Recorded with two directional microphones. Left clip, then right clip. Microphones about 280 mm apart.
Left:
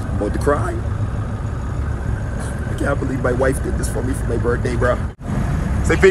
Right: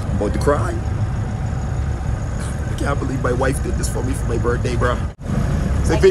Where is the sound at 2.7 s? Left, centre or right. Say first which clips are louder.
Left 2 dB; centre.